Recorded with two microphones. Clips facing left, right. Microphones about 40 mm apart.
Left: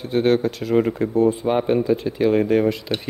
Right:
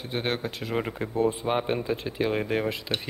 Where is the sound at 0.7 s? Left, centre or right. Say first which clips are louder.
Left 9 dB; centre.